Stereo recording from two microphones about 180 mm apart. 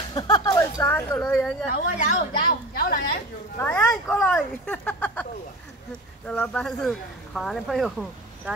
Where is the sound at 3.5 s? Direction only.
10° left (ahead or behind).